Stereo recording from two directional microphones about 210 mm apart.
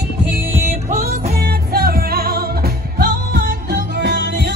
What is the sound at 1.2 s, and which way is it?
Music, 45° right (ahead or behind).